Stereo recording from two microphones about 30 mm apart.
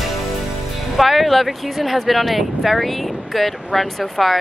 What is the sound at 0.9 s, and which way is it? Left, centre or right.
Speech, centre.